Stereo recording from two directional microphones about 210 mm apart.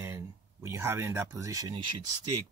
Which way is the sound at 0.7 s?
10° right (ahead or behind).